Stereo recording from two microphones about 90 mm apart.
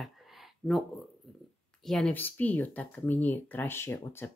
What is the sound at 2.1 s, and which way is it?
Speech, 20° left (ahead or behind).